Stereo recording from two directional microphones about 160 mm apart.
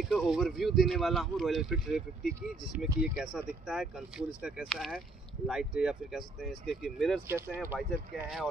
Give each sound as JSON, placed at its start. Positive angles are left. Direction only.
{"t": 0.0, "sound": "speech", "side_deg": 0}
{"t": 7.2, "sound": "speech", "side_deg": -15}